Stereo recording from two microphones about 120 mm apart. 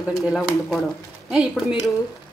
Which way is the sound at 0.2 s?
5° right (ahead or behind).